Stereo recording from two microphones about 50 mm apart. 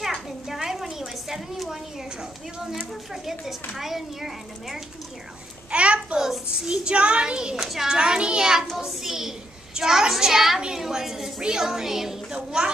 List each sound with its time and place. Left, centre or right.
0.0 s a sound: centre
3.1 s a woman's voice: centre
5.7 s a sound: right
6.1 s a child's voice: centre
7.5 s a woman's voice: centre
7.9 s a woman's voice: centre